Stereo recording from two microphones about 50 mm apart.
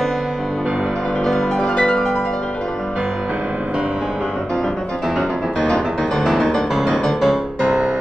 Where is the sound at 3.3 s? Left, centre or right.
Right.